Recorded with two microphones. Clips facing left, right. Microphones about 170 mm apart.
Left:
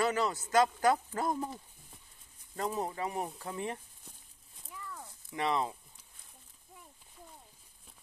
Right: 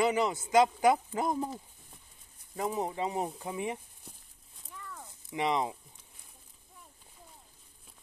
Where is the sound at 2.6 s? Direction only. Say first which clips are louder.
Right 2 dB; 15° right (ahead or behind).